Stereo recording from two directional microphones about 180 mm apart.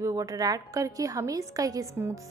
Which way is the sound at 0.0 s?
20° right (ahead or behind).